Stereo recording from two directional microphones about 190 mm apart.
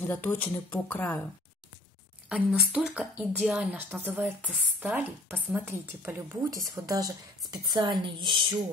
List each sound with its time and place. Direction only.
0.0 s speech: 10° left (ahead or behind)
2.2 s a woman's voice: 5° right (ahead or behind); by 8.5 s 25° right (ahead or behind)